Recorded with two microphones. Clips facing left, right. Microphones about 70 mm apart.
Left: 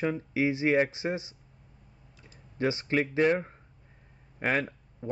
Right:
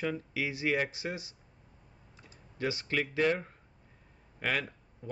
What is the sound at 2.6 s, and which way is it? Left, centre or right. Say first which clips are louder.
Speech: left 5 dB; left.